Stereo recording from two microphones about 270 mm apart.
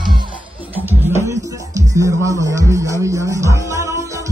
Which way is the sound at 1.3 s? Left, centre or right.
Centre.